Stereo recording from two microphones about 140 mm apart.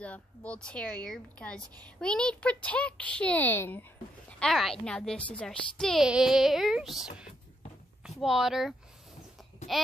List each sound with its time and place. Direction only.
0.0 s speech: 10° left (ahead or behind)
4.3 s a woman's voice: 5° left (ahead or behind)